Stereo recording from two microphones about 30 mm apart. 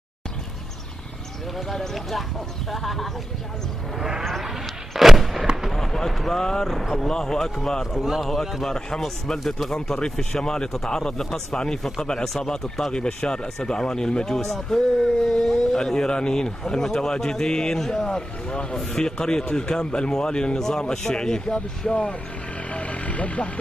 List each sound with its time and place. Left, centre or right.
1.7 s speech: centre
4.9 s artillery fire: centre
5.7 s a sound: centre
6.1 s speech: centre
6.4 s speech: centre
7.9 s a man's voice: centre
8.6 s speech: left
11.5 s speech: left
12.9 s speech: left
20.5 s speech: centre
20.9 s speech: left
22.7 s vehicle: left